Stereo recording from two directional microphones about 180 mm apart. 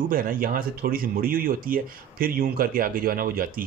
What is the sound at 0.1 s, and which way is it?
Speech, 50° right (ahead or behind).